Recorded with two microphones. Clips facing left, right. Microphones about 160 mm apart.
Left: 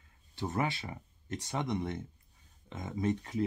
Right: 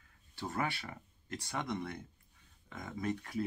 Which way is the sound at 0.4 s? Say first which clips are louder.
Left 4 dB; 20° left (ahead or behind).